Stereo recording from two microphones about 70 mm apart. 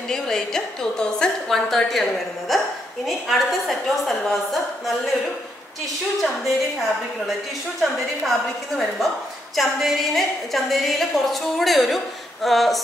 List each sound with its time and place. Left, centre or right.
0.1 s a woman's voice: centre
6.2 s a woman's voice: centre